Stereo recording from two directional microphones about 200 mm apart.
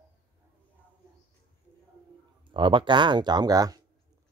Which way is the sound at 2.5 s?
25° right (ahead or behind).